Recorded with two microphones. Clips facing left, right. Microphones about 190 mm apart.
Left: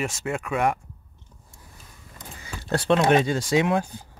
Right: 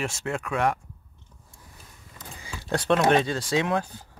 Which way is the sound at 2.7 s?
5° left (ahead or behind).